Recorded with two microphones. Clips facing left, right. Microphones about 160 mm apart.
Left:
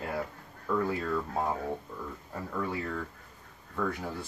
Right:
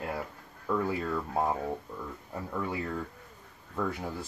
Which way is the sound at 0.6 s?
10° right (ahead or behind).